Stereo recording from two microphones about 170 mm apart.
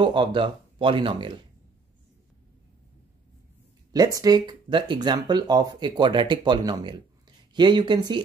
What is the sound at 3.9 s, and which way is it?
Speech, 20° right (ahead or behind).